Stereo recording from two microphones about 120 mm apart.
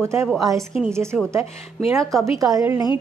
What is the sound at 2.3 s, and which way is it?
Speech, 30° right (ahead or behind).